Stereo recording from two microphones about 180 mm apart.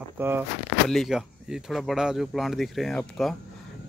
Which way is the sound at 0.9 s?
Centre (ahead or behind).